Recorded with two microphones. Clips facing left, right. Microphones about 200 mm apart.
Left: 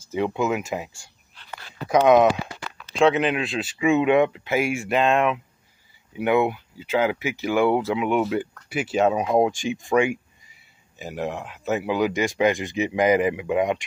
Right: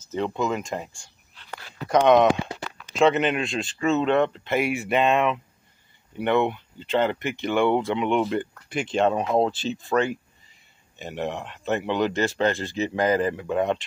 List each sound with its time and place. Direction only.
0.1 s speech: 10° left (ahead or behind)
1.9 s speech: 5° left (ahead or behind)